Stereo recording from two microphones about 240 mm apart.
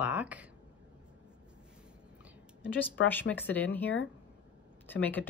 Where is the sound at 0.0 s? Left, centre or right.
Centre.